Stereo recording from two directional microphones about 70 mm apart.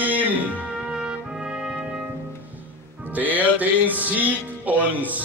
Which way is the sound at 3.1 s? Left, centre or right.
Right.